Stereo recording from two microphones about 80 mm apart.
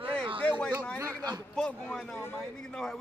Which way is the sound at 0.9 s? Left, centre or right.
Right.